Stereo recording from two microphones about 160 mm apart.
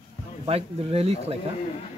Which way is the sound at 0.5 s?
40° right (ahead or behind).